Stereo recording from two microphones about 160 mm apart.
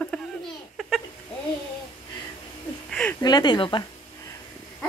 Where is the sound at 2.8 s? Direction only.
5° left (ahead or behind).